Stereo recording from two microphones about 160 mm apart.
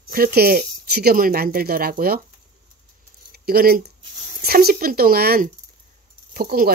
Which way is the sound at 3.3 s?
75° right (ahead or behind).